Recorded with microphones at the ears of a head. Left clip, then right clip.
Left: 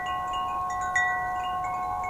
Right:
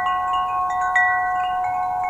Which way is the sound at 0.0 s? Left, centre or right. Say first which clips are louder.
Right 8 dB; right.